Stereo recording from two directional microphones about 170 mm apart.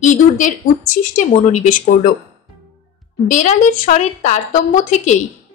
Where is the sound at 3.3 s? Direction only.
45° left (ahead or behind).